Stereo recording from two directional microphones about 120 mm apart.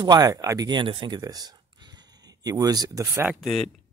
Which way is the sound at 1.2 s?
35° right (ahead or behind).